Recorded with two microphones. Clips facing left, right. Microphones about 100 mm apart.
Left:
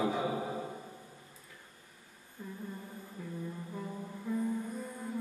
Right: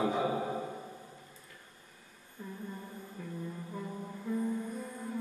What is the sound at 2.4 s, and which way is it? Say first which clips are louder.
Music: even; 5° left (ahead or behind).